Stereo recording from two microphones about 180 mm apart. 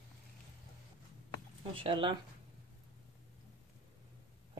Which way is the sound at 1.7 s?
30° right (ahead or behind).